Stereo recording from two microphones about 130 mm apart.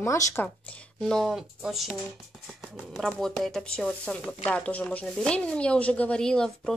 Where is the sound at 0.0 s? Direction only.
20° left (ahead or behind).